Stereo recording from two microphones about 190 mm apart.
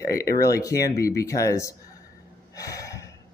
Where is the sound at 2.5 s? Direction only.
15° left (ahead or behind).